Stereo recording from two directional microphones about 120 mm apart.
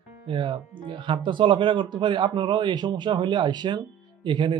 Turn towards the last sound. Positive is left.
turn(degrees=-40)  # may be behind; listen again after turning